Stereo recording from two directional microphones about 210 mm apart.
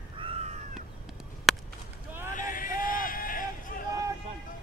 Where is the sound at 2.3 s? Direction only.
40° left (ahead or behind).